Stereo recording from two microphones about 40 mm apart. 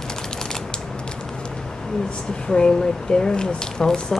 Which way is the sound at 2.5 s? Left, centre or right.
Centre.